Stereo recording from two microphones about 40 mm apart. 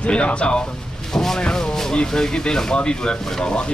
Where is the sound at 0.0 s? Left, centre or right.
Left.